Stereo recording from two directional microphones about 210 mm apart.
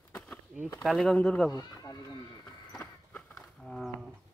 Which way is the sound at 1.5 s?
15° left (ahead or behind).